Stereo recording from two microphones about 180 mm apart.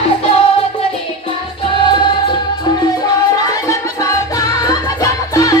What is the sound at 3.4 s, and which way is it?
Music, 20° left (ahead or behind).